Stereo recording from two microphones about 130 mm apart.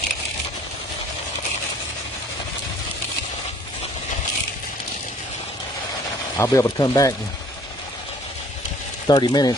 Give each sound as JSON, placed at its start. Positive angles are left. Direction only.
{"t": 6.3, "sound": "speech", "side_deg": 20}
{"t": 9.0, "sound": "speech", "side_deg": 35}